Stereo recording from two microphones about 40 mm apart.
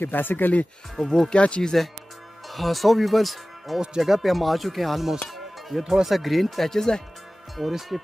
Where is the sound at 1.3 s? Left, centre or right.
Left.